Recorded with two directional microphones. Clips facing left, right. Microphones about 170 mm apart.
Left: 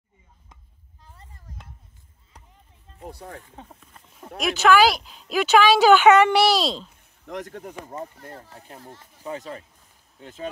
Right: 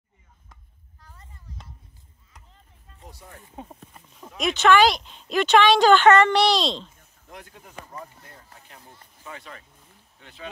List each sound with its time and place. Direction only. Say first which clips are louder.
3.0 s speech: left 8 dB; 60° left (ahead or behind)
4.4 s speech: even; centre (ahead or behind)
7.2 s speech: left 11 dB; 80° left
8.0 s speech: left 7 dB; 50° left (ahead or behind)
9.2 s speech: left 8 dB; 35° left (ahead or behind)